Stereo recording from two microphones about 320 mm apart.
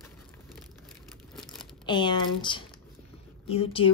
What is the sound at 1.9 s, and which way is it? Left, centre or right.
Speech, centre.